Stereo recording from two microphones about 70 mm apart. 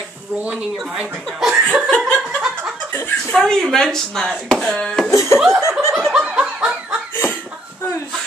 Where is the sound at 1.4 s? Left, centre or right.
Centre.